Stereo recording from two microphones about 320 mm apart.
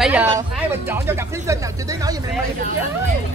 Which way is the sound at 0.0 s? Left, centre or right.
Centre.